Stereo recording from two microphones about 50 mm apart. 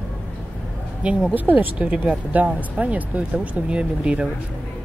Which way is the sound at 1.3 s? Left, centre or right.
Right.